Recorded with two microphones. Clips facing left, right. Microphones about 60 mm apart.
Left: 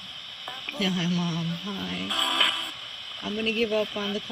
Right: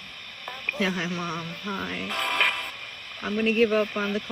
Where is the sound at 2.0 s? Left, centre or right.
Right.